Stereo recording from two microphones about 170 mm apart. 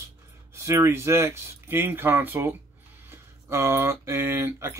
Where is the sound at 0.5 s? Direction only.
15° right (ahead or behind).